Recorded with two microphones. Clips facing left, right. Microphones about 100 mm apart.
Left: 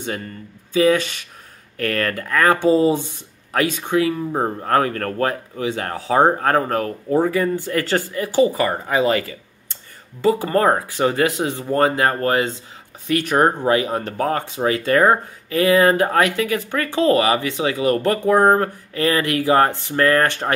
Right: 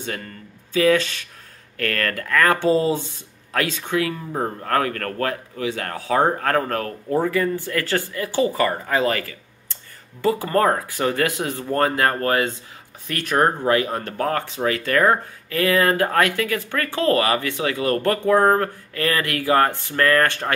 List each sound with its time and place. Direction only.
0.7 s speech: 20° left (ahead or behind)